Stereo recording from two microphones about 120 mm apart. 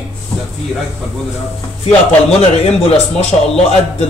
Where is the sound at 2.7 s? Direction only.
60° left (ahead or behind).